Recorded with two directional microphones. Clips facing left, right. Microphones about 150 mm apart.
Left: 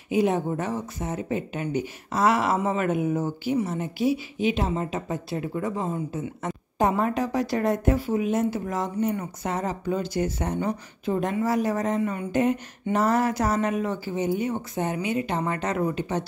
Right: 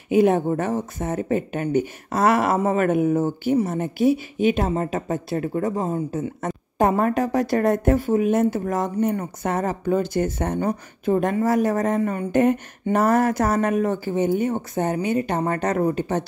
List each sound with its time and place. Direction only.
0.1 s a woman's voice: 55° right (ahead or behind)
5.5 s a woman's voice: 40° right (ahead or behind)